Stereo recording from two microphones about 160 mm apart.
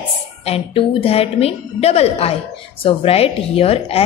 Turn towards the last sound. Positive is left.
turn(degrees=35)  # may be behind; listen again after turning